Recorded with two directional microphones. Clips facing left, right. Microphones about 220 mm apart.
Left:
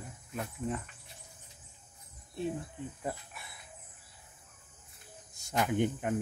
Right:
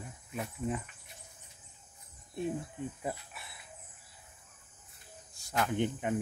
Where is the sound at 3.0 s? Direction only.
5° right (ahead or behind).